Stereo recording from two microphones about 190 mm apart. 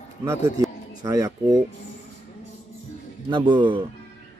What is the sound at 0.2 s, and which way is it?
Speech, 15° right (ahead or behind).